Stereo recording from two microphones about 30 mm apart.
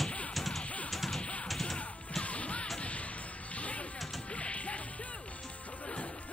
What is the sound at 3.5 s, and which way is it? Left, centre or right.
Basketball bounce, left.